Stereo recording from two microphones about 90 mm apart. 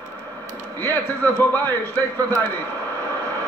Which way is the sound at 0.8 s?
20° left (ahead or behind).